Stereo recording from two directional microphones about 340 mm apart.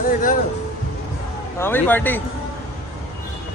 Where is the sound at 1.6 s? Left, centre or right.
Centre.